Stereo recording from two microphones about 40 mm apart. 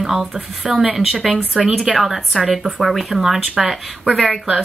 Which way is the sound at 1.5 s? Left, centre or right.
Centre.